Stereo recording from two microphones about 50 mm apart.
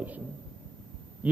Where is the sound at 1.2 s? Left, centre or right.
Right.